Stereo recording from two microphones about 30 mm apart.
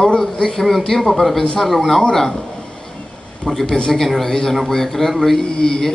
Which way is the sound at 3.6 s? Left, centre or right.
Left.